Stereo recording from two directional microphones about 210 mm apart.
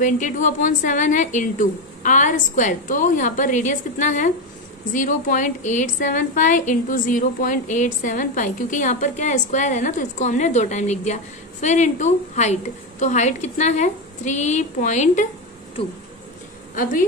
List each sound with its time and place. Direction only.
0.0 s a woman's voice: 35° left (ahead or behind)